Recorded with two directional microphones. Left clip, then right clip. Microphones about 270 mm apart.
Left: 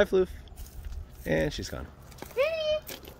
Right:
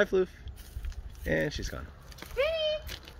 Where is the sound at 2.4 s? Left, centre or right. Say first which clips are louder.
Left 2 dB; left.